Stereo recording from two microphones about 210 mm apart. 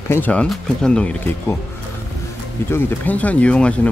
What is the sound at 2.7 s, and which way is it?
Speech, 10° left (ahead or behind).